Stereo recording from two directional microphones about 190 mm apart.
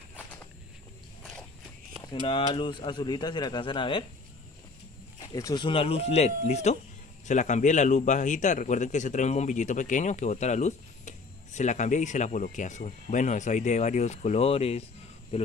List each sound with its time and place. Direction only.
2.2 s speech: 25° left (ahead or behind)
5.2 s a man's voice: 20° left (ahead or behind)